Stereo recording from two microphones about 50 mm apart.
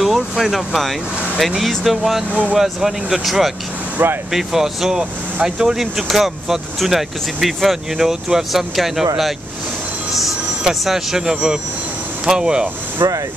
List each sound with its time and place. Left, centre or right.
0.0 s speech: centre
13.0 s speech: right